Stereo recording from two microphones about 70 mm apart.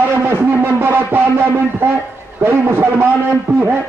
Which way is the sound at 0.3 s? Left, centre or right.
Right.